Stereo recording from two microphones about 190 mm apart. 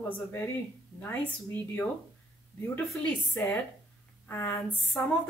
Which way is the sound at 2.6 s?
10° left (ahead or behind).